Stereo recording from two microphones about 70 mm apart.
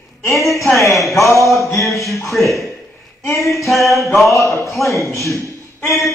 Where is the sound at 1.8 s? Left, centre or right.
Centre.